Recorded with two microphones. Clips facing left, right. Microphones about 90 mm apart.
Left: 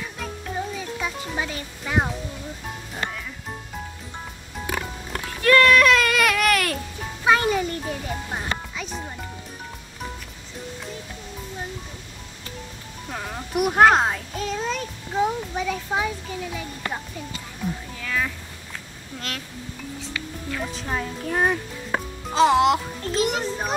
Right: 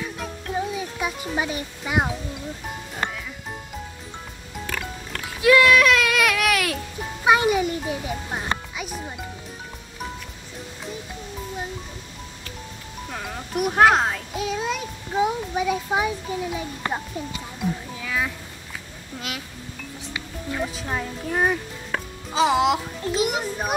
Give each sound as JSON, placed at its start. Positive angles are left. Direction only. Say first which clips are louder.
{"t": 0.0, "sound": "music", "louder": "right 1 dB", "side_deg": -10}
{"t": 4.6, "sound": "music", "louder": "left 2 dB", "side_deg": 20}
{"t": 5.4, "sound": "a sound", "louder": "even", "side_deg": -5}
{"t": 7.2, "sound": "music", "louder": "right 1 dB", "side_deg": -10}
{"t": 13.1, "sound": "a child's voice", "louder": "left 2 dB", "side_deg": 5}
{"t": 17.6, "sound": "music", "louder": "right 2 dB", "side_deg": -10}
{"t": 19.1, "sound": "speech", "louder": "even", "side_deg": -5}
{"t": 20.1, "sound": "music", "louder": "right 2 dB", "side_deg": -20}
{"t": 20.6, "sound": "a child's voice", "louder": "left 1 dB", "side_deg": -5}
{"t": 21.9, "sound": "music", "louder": "left 2 dB", "side_deg": 20}
{"t": 22.3, "sound": "a child's voice", "louder": "left 2 dB", "side_deg": 0}